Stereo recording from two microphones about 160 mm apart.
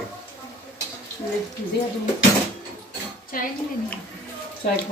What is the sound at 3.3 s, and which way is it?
Speech, 60° left (ahead or behind).